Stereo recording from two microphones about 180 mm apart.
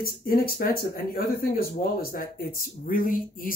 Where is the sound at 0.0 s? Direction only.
55° left (ahead or behind).